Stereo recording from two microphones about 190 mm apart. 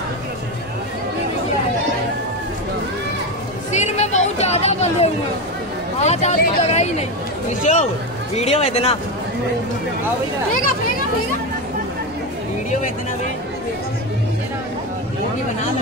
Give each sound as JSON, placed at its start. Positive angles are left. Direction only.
{"t": 3.7, "sound": "music", "side_deg": 35}
{"t": 5.9, "sound": "speech", "side_deg": 35}